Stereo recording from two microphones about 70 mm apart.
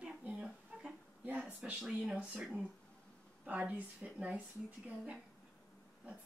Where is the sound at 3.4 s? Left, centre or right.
Centre.